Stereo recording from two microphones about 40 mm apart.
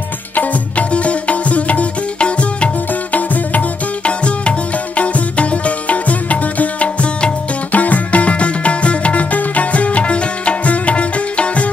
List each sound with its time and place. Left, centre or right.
0.4 s music: left
3.2 s music: left
4.2 s music: left
7.7 s music: left